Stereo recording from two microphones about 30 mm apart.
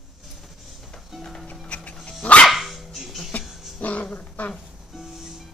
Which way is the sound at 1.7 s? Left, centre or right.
Left.